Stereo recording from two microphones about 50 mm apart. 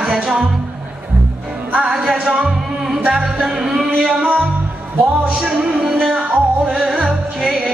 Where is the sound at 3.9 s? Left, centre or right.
Centre.